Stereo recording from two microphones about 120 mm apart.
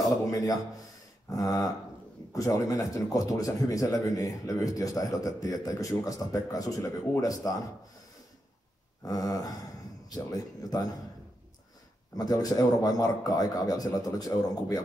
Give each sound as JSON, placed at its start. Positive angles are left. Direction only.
{"t": 0.3, "sound": "speech", "side_deg": 30}
{"t": 9.0, "sound": "speech", "side_deg": 30}
{"t": 12.2, "sound": "speech", "side_deg": 30}